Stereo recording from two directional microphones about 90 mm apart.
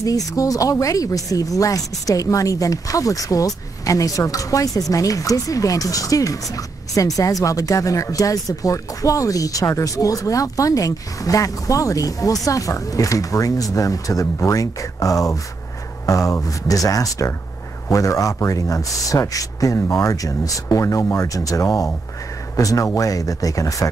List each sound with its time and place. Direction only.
0.0 s speech: 40° left (ahead or behind)